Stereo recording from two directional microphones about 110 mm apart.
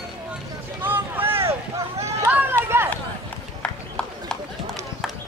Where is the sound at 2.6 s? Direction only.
20° right (ahead or behind).